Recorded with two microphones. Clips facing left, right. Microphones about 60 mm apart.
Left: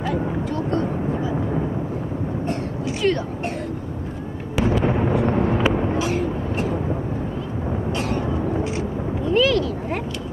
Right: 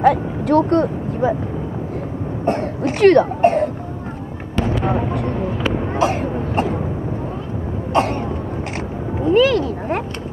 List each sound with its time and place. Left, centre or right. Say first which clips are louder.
0.0 s speech: right 8 dB; right
2.8 s speech: right 11 dB; right
3.4 s a sound: right 13 dB; right
4.6 s music: even; centre
5.9 s vehicle: right 4 dB; right
7.9 s vehicle: right 10 dB; right
9.2 s a sound: right 5 dB; right